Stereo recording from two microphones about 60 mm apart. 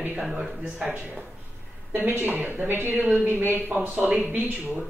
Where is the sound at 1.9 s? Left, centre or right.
Right.